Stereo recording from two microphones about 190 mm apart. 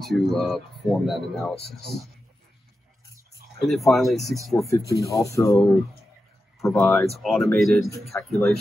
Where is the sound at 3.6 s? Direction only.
Centre (ahead or behind).